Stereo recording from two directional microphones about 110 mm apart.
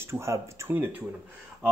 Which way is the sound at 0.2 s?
25° right (ahead or behind).